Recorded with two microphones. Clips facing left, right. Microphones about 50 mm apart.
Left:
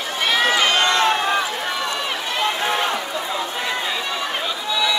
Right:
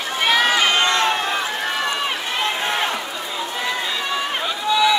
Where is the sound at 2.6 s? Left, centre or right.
Centre.